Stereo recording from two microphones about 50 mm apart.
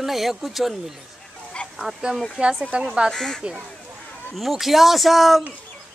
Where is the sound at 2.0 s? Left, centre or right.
Centre.